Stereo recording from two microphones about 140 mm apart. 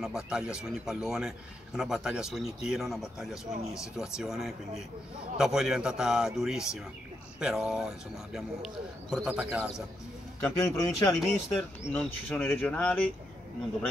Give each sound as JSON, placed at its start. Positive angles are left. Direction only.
{"t": 0.0, "sound": "speech", "side_deg": -5}
{"t": 10.4, "sound": "a man's voice", "side_deg": 20}
{"t": 11.1, "sound": "speech", "side_deg": 5}